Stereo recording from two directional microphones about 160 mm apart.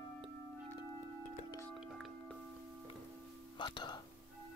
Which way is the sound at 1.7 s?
5° right (ahead or behind).